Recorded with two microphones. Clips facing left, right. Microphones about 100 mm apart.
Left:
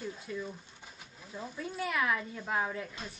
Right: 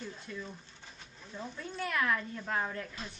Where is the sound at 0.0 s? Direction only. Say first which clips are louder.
Left 4 dB; 5° left (ahead or behind).